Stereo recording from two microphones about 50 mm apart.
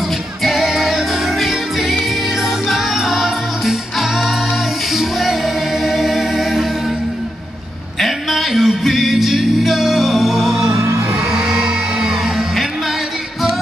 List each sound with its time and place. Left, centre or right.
0.4 s music: centre
5.9 s choir: centre
8.0 s music: centre
10.8 s music: right
11.3 s music: centre